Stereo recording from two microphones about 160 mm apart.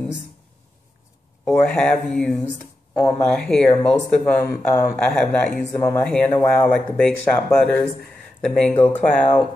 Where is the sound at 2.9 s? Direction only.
20° left (ahead or behind).